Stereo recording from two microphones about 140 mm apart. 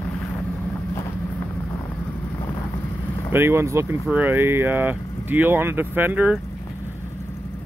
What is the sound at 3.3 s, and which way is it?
Speech, 15° right (ahead or behind).